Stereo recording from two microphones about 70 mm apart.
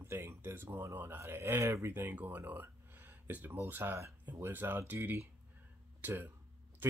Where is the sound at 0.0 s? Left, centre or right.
Right.